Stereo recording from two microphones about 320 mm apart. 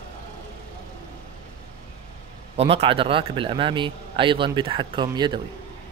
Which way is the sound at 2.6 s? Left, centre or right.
Centre.